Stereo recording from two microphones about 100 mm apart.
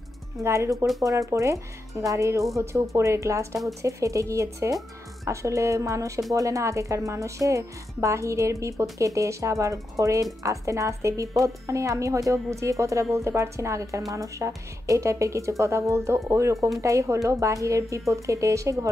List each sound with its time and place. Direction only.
0.4 s a woman's voice: 30° right (ahead or behind)
16.5 s speech: centre (ahead or behind)
16.8 s a woman's voice: 35° right (ahead or behind)